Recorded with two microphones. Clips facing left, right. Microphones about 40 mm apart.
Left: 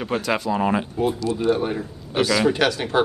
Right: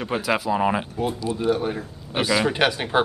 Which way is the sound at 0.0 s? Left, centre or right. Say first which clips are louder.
Even; centre.